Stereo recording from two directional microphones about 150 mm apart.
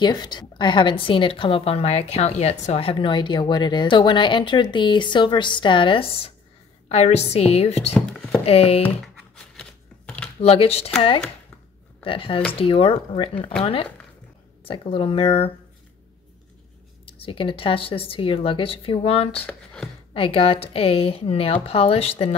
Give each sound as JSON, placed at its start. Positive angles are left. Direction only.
{"t": 0.0, "sound": "a woman's voice", "side_deg": 30}
{"t": 7.9, "sound": "a sound", "side_deg": 5}
{"t": 8.5, "sound": "a woman's voice", "side_deg": 40}
{"t": 9.0, "sound": "shuffling cards", "side_deg": 5}
{"t": 10.4, "sound": "a woman's voice", "side_deg": 40}
{"t": 12.0, "sound": "a woman's voice", "side_deg": 35}
{"t": 17.0, "sound": "a woman's voice", "side_deg": 40}
{"t": 19.4, "sound": "speech", "side_deg": 5}
{"t": 20.2, "sound": "a woman's voice", "side_deg": 40}